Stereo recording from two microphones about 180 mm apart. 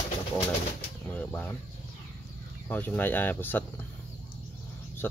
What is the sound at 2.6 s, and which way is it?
Speech, 10° left (ahead or behind).